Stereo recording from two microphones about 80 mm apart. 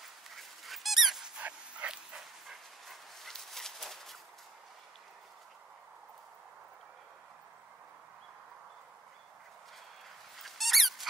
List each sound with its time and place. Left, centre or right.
0.4 s dog: centre
1.4 s dog: centre
2.1 s dog: centre
10.3 s a sound: centre